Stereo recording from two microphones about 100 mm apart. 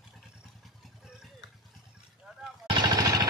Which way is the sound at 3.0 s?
35° right (ahead or behind).